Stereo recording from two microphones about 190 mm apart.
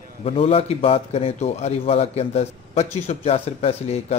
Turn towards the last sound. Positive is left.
turn(degrees=35)  # may be behind; listen again after turning